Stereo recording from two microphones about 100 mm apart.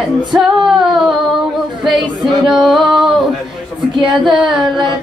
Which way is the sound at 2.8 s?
5° right (ahead or behind).